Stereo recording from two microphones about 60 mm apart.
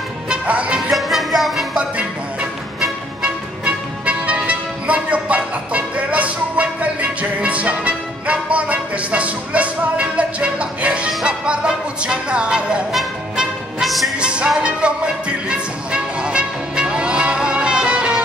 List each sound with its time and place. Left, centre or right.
0.3 s music: centre
0.8 s music: centre
3.2 s music: centre
12.9 s music: centre
14.1 s music: centre